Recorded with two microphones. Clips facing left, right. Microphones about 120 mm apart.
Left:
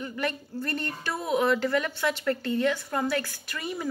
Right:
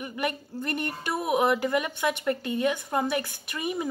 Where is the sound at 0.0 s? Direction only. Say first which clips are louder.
Even; 15° right (ahead or behind).